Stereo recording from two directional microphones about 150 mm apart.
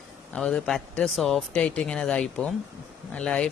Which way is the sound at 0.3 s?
5° left (ahead or behind).